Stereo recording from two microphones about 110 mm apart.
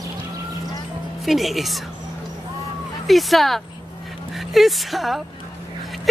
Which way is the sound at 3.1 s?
Centre (ahead or behind).